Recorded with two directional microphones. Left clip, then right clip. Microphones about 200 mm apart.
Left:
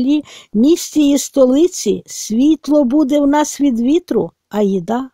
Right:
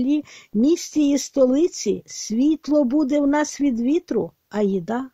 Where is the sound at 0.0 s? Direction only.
40° left (ahead or behind).